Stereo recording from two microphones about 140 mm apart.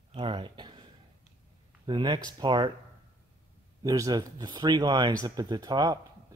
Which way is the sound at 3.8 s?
25° right (ahead or behind).